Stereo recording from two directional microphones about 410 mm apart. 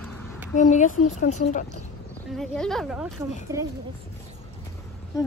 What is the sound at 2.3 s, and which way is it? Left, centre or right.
A woman's voice, centre.